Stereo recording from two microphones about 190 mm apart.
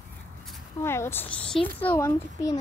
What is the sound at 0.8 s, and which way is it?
A child's voice, 15° left (ahead or behind).